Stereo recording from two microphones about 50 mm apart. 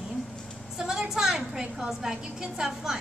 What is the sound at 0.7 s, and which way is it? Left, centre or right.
A woman's voice, centre.